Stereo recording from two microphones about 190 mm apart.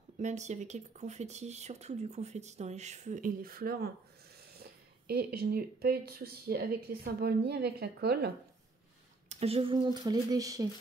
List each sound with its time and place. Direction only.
0.2 s speech: 40° right (ahead or behind); by 8.3 s 60° right (ahead or behind)
9.3 s speech: 30° right (ahead or behind)